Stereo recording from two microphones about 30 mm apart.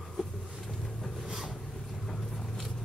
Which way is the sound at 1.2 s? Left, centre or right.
Centre.